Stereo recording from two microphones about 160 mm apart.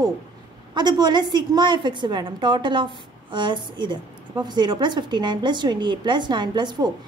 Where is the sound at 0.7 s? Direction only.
25° right (ahead or behind).